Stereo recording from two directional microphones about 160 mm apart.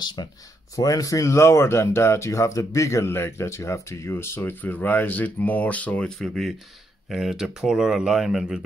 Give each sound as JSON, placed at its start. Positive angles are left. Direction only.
{"t": 0.0, "sound": "speech", "side_deg": 25}